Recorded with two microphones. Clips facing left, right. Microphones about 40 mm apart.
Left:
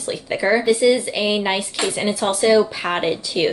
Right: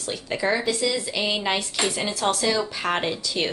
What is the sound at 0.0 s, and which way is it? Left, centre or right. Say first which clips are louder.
A woman's voice: left 4 dB; centre.